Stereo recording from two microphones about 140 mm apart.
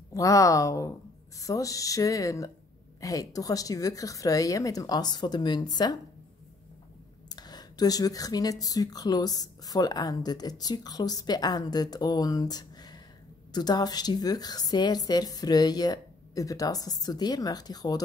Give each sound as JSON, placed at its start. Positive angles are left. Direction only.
{"t": 0.1, "sound": "speech", "side_deg": 25}
{"t": 7.2, "sound": "speech", "side_deg": 30}